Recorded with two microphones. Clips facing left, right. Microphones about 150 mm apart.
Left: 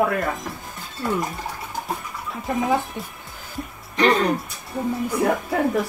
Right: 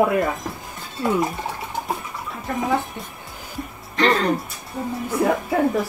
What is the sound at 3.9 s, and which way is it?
Speech, 15° left (ahead or behind).